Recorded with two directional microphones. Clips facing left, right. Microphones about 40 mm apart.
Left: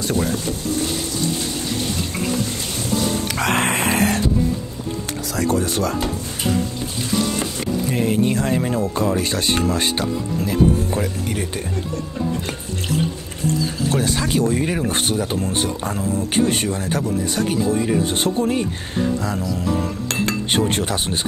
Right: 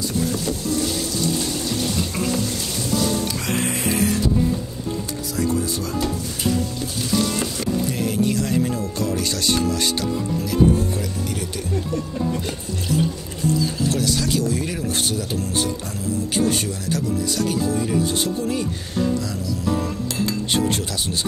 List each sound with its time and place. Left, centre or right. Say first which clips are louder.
0.0 s speech: left 3 dB; left
0.3 s boat: even; left
3.3 s a sound: left 5 dB; left
5.5 s speech: left 4 dB; left
7.9 s speech: left 3 dB; left
13.9 s speech: left 5 dB; left
20.1 s chink: left 3 dB; left
20.6 s speech: left 2 dB; left